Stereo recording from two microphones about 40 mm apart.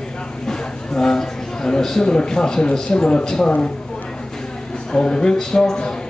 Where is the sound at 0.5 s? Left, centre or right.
Centre.